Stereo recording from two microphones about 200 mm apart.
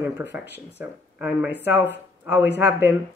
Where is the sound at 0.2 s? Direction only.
10° right (ahead or behind).